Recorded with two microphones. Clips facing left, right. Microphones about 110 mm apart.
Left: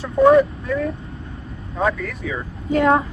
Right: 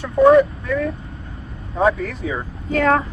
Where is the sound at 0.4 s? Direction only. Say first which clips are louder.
Right 1 dB; 30° left (ahead or behind).